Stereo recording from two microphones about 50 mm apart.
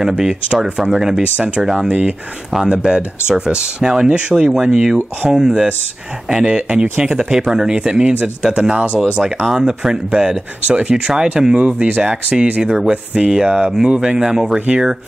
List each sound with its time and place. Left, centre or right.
0.2 s speech: centre
7.9 s speech: right
9.2 s speech: centre